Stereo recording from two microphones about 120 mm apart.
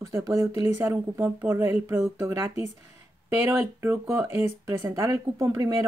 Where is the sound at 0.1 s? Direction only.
30° right (ahead or behind).